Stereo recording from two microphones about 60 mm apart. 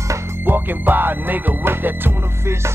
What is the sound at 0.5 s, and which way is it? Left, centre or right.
Music, right.